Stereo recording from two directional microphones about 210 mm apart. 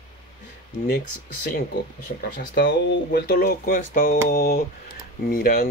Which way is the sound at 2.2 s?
45° left (ahead or behind).